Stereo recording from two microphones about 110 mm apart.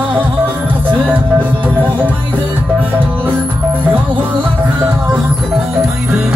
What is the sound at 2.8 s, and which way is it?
Music, 20° right (ahead or behind).